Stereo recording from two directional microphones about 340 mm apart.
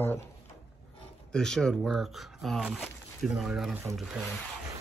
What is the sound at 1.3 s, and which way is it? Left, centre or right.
Speech, centre.